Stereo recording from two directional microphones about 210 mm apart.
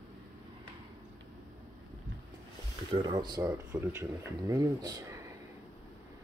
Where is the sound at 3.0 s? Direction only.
20° right (ahead or behind).